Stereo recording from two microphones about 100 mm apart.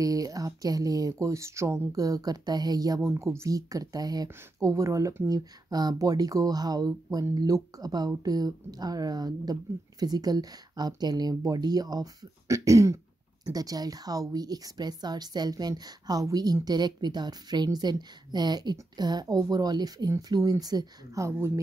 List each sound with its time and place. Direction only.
0.0 s speech: 35° right (ahead or behind)
3.1 s speech: 30° right (ahead or behind)